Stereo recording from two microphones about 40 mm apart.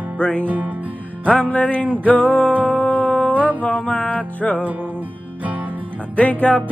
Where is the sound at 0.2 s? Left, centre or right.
Left.